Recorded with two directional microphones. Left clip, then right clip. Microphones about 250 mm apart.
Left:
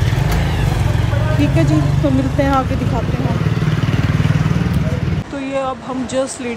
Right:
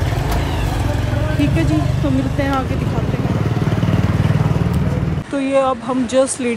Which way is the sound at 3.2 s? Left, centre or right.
Right.